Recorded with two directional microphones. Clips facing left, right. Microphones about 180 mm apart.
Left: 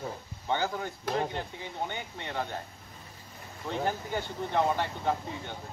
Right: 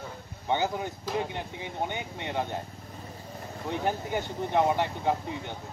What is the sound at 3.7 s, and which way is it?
Speech, 15° right (ahead or behind).